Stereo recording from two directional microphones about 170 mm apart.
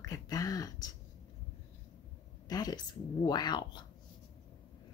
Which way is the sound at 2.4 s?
20° left (ahead or behind).